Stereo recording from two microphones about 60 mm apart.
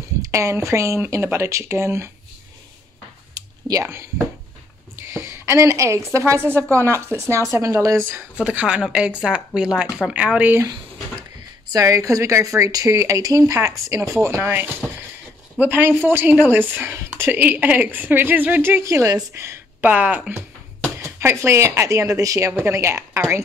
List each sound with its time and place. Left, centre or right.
0.2 s a woman's voice: right
3.3 s clicking: right
3.8 s a woman's voice: right
8.4 s speech: centre
11.7 s speech: right
14.4 s speech: right
18.6 s a woman's voice: right
19.8 s speech: right
21.0 s speech: right
22.7 s speech: right